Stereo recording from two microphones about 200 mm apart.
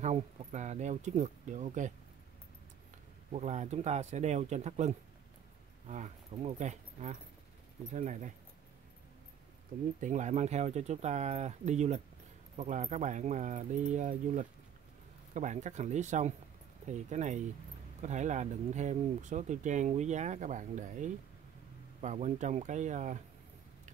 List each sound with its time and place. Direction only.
0.0 s speech: 35° right (ahead or behind)
3.3 s speech: 35° right (ahead or behind)
9.9 s speech: 40° right (ahead or behind)